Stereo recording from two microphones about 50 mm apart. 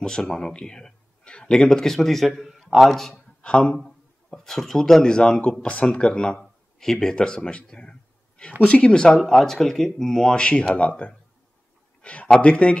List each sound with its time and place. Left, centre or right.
0.0 s speech: centre
3.4 s speech: centre
4.3 s speech: centre
9.1 s speech: centre; by 11.1 s left
12.0 s a sound: left
12.4 s speech: left